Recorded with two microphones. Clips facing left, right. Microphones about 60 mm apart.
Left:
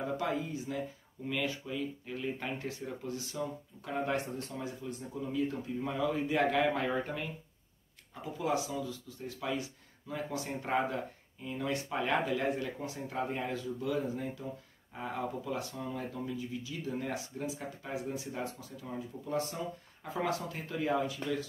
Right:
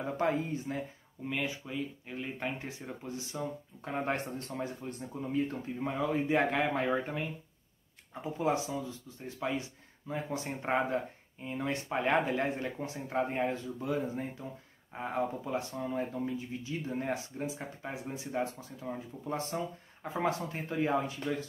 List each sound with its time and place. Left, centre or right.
0.2 s speech: right
1.2 s speech: centre; by 5.9 s right
5.9 s speech: right
8.1 s speech: right